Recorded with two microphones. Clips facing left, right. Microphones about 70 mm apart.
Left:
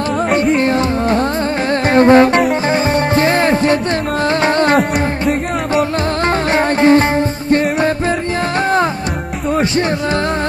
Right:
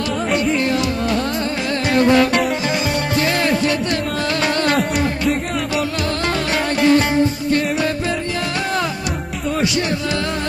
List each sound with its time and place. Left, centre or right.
0.6 s music: left
6.2 s music: left